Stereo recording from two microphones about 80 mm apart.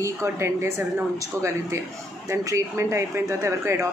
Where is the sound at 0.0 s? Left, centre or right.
Right.